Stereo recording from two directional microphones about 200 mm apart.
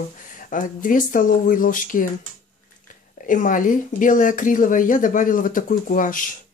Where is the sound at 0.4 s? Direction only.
40° left (ahead or behind).